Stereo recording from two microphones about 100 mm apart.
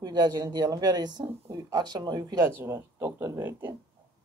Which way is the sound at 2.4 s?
25° right (ahead or behind).